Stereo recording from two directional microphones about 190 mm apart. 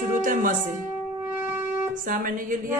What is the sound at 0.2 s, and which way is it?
Speech, 45° right (ahead or behind).